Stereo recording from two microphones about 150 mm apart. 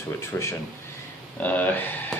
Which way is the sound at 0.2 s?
15° left (ahead or behind).